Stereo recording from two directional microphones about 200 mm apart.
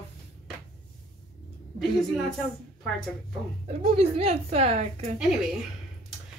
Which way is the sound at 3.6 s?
30° right (ahead or behind).